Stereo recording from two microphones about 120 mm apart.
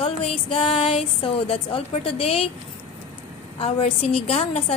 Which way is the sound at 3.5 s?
50° left (ahead or behind).